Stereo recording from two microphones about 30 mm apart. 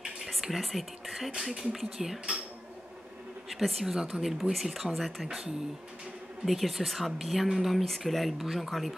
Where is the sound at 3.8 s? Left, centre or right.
Centre.